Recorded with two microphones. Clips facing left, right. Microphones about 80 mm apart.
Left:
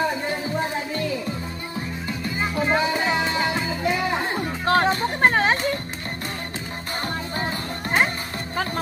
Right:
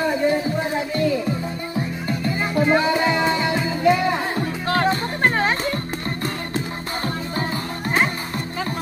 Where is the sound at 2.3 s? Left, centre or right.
Centre.